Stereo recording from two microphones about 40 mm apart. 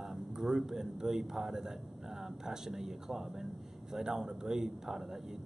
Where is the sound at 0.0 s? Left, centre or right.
Centre.